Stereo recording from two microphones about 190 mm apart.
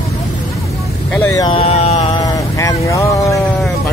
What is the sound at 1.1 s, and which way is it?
Speech, 15° left (ahead or behind).